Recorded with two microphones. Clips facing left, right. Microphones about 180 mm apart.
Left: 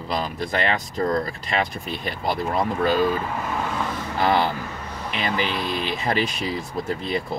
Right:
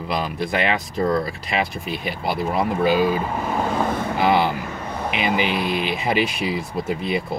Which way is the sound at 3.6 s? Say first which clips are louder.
Right 5 dB; 45° right (ahead or behind).